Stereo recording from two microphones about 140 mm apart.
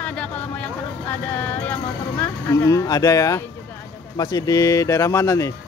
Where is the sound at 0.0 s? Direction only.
10° left (ahead or behind).